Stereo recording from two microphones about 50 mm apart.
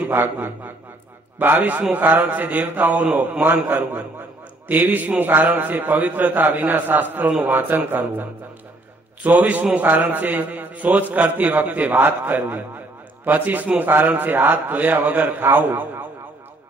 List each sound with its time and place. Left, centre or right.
0.1 s a man's voice: right